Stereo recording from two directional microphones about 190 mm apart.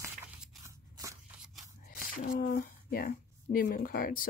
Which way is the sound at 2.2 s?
45° left (ahead or behind).